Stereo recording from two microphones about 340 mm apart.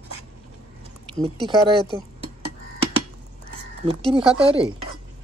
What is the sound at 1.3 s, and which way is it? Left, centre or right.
Speech, centre.